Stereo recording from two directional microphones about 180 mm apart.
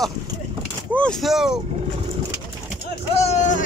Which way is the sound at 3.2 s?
40° left (ahead or behind).